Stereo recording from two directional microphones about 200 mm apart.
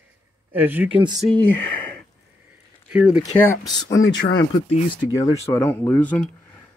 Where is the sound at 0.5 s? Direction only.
10° right (ahead or behind).